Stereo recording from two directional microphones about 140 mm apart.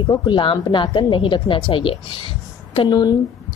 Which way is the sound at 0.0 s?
35° left (ahead or behind).